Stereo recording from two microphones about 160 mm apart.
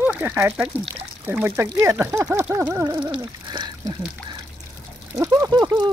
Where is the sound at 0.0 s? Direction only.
10° right (ahead or behind).